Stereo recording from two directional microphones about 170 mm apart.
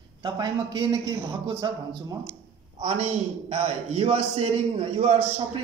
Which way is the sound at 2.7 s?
40° right (ahead or behind).